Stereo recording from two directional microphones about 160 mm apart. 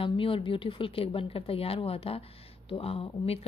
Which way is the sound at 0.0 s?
35° left (ahead or behind).